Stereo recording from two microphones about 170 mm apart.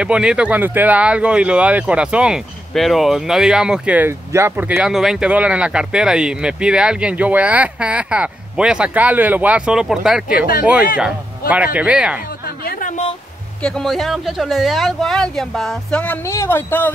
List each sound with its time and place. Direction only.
0.0 s speech: 5° right (ahead or behind)
12.4 s music: 60° left (ahead or behind)
13.6 s speech: 5° left (ahead or behind)